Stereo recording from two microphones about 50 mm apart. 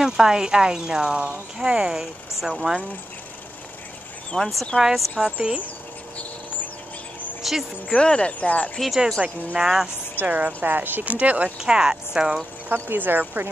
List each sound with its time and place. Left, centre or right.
0.0 s speech: centre
4.4 s speech: centre
5.2 s speech: centre
7.4 s speech: centre
7.9 s speech: centre
8.7 s speech: centre
9.6 s speech: centre
10.2 s speech: right
11.1 s speech: right
11.6 s speech: centre
12.7 s speech: right